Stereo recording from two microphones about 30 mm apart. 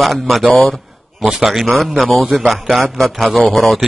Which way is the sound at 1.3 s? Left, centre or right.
Centre.